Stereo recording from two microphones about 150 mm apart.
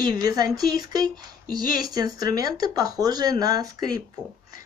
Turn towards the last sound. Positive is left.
turn(degrees=-25)  # may be behind; listen again after turning